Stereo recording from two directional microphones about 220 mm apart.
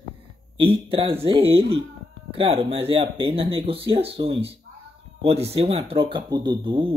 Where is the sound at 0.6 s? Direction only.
25° right (ahead or behind).